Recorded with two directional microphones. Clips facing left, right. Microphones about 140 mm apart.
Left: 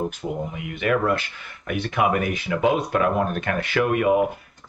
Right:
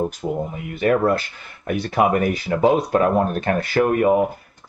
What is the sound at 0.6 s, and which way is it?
Speech, 40° right (ahead or behind).